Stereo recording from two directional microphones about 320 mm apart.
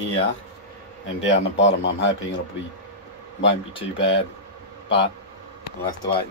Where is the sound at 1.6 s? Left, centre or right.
Left.